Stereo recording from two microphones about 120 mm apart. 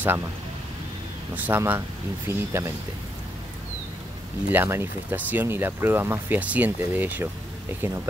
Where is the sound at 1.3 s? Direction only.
15° right (ahead or behind).